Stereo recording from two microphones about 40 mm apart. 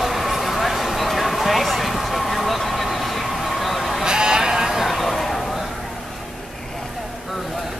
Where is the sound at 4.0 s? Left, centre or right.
Centre.